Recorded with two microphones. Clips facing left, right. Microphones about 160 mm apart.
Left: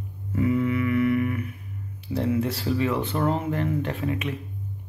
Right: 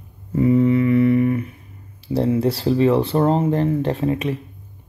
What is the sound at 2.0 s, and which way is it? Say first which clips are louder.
Speech: right 6 dB; 30° right (ahead or behind).